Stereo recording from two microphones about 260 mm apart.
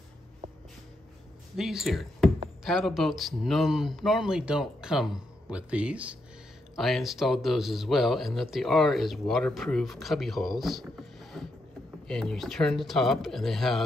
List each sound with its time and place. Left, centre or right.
1.6 s speech: centre